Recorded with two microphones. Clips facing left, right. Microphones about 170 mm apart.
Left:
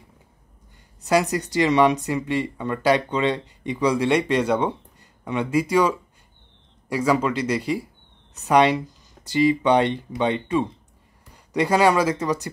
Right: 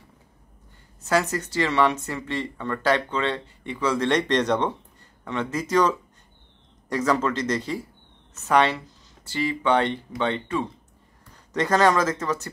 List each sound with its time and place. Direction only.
1.0 s speech: 15° left (ahead or behind)